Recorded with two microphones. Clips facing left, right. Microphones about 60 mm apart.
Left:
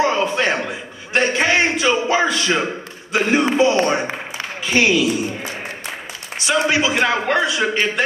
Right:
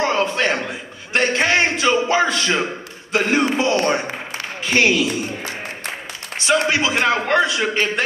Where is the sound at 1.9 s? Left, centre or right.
Left.